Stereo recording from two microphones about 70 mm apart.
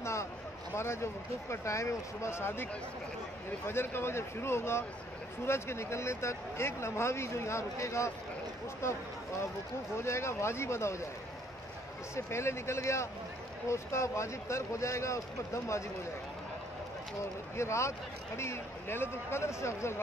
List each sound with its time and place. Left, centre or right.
0.0 s a sound: left
0.7 s speech: left
9.9 s speech: left
12.3 s speech: left
17.2 s speech: left